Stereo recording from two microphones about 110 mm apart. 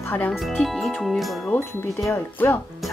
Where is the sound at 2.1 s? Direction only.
20° left (ahead or behind).